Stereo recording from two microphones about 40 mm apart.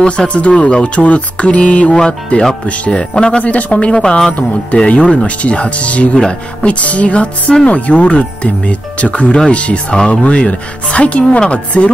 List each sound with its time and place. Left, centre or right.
0.3 s a woman's voice: left
3.9 s speech: centre
4.3 s a woman's voice: left